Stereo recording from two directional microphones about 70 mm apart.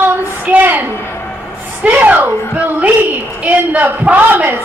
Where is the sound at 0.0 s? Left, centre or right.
Right.